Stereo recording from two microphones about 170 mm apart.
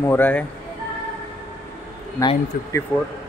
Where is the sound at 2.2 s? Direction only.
20° left (ahead or behind).